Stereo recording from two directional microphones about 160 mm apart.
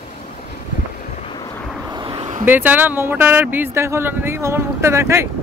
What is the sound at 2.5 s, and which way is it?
Speech, 10° right (ahead or behind).